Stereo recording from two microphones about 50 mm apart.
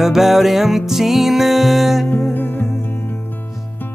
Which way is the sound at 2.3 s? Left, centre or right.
Left.